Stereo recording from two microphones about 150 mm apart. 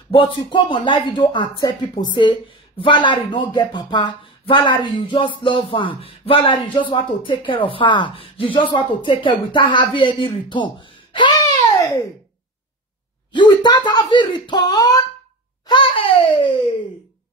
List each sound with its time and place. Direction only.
0.1 s speech: 35° left (ahead or behind)
13.3 s speech: 30° left (ahead or behind)